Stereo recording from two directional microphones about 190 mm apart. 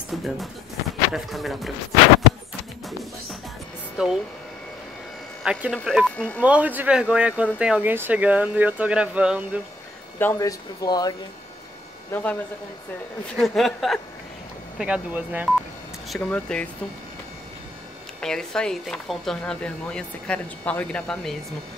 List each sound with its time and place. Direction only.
0.1 s speech: centre (ahead or behind)
4.0 s speech: 5° right (ahead or behind)
5.4 s speech: 5° right (ahead or behind)
6.4 s speech: 5° right (ahead or behind)
10.1 s speech: 10° left (ahead or behind)
12.1 s speech: 5° left (ahead or behind)
13.4 s speech: centre (ahead or behind)
16.1 s speech: 5° left (ahead or behind)
18.2 s speech: 5° left (ahead or behind)